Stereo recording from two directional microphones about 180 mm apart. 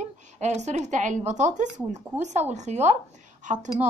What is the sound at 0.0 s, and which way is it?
A woman's voice, 40° right (ahead or behind).